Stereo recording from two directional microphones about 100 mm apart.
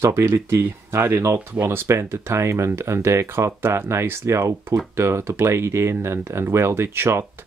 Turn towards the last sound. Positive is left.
turn(degrees=-25)  # may be behind; listen again after turning